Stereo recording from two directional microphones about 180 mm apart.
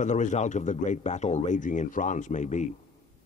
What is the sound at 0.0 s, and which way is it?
Speech, 40° left (ahead or behind).